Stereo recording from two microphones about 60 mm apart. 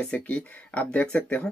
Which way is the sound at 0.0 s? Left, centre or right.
Left.